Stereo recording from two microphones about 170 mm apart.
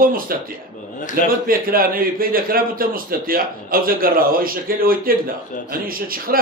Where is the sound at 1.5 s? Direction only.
60° right (ahead or behind).